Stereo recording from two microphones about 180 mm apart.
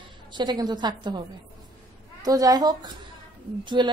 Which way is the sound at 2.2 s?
20° right (ahead or behind).